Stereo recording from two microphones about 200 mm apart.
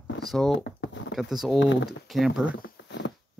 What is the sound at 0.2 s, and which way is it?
Speech, centre (ahead or behind).